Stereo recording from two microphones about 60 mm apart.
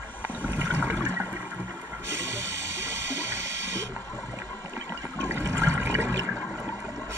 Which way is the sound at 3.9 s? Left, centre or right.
Left.